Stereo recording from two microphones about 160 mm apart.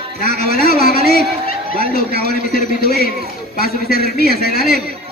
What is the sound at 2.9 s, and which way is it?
Speech, 70° left (ahead or behind).